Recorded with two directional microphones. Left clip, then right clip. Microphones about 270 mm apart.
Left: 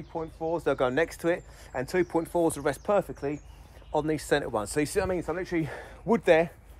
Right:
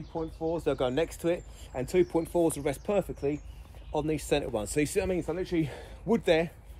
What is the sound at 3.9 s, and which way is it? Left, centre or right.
Speech, left.